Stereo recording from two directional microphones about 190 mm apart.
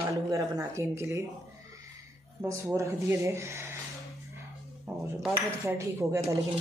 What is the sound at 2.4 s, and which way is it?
Speech, 15° right (ahead or behind).